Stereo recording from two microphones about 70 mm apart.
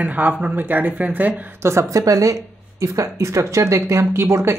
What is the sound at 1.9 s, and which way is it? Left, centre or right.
Speech, right.